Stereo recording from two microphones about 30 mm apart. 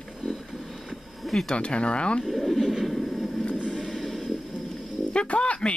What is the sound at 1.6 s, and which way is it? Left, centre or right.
Speech, left.